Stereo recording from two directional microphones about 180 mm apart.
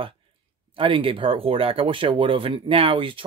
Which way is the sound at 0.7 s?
30° right (ahead or behind).